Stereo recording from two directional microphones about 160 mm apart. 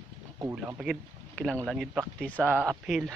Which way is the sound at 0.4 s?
15° right (ahead or behind).